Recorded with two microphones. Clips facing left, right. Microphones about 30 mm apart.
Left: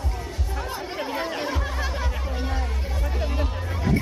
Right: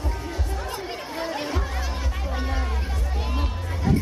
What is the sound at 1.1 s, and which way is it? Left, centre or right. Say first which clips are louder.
Music: right 1 dB; centre.